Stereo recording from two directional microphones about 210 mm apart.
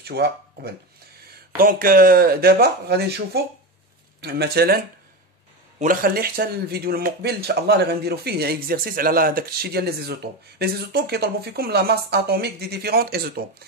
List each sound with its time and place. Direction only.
0.0 s speech: 50° right (ahead or behind)